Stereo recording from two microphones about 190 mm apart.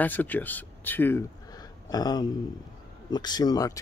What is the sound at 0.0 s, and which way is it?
Speech, 10° left (ahead or behind).